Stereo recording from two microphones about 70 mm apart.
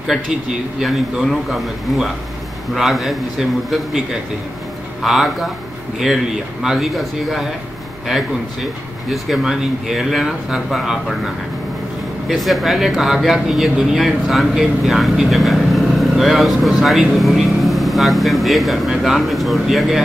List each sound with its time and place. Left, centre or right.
0.0 s speech: centre
9.1 s speech: centre